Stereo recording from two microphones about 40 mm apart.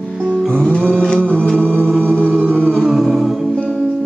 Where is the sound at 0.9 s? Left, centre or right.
Centre.